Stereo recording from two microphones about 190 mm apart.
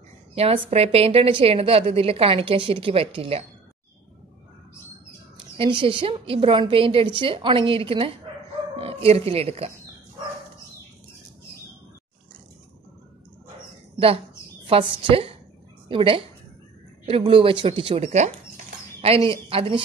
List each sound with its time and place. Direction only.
0.3 s a woman's voice: 30° right (ahead or behind)
5.6 s a woman's voice: 30° right (ahead or behind)
13.9 s a woman's voice: 30° right (ahead or behind)